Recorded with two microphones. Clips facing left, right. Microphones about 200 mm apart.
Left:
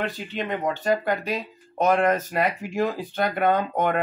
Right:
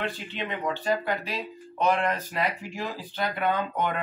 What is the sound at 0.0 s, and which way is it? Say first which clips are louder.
Speech: left 4 dB; 45° left (ahead or behind).